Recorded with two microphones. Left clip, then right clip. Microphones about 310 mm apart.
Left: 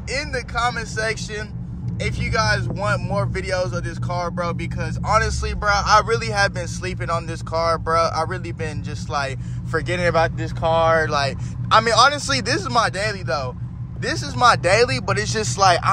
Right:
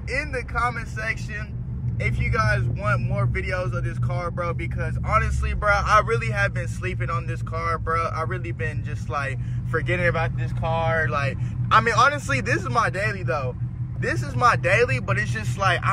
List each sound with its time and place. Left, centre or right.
0.1 s speech: centre
10.6 s speech: left
11.1 s speech: centre